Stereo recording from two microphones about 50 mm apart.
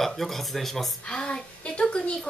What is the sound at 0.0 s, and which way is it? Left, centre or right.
Speech, centre.